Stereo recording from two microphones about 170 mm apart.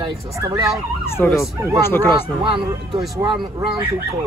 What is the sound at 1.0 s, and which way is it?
Speech, 15° left (ahead or behind).